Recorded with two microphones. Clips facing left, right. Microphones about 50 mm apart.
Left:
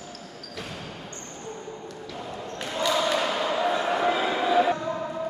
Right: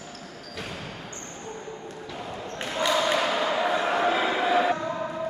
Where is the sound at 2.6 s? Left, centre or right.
Right.